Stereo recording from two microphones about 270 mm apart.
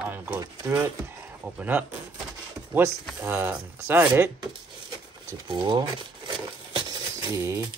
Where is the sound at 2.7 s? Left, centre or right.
Centre.